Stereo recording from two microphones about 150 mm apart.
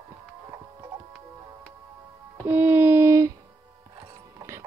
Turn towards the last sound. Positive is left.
turn(degrees=-20)  # may be behind; listen again after turning